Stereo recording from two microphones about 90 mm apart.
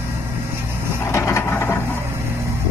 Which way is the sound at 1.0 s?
30° left (ahead or behind).